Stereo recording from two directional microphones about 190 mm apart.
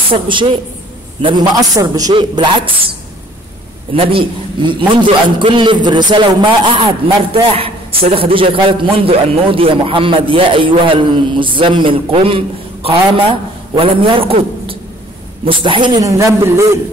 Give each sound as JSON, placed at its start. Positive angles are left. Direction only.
{"t": 0.1, "sound": "a man's voice", "side_deg": -25}
{"t": 3.9, "sound": "a man's voice", "side_deg": -30}